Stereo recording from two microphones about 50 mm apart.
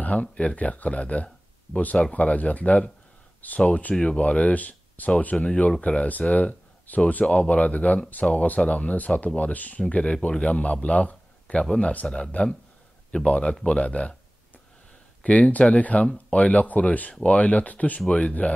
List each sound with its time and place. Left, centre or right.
0.0 s speech: left
6.2 s a sound: left
7.1 s a man's voice: left
15.2 s speech: left